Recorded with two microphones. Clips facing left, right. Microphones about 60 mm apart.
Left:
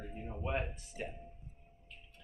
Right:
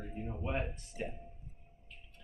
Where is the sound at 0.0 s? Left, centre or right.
Centre.